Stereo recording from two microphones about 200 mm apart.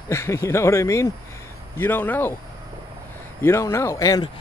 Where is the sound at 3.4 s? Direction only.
10° left (ahead or behind).